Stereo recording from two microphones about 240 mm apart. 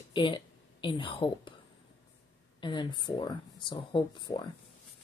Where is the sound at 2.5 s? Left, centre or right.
Centre.